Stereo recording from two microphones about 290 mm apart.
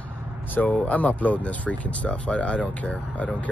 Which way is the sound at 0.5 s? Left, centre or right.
Centre.